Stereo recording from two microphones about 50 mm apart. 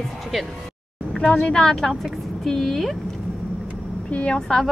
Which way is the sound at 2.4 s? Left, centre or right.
Centre.